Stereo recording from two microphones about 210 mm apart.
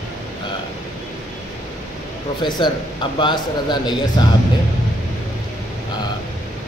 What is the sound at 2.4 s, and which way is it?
Speech, 20° left (ahead or behind).